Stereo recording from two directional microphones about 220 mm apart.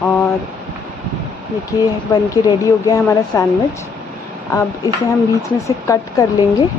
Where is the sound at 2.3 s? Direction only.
15° left (ahead or behind).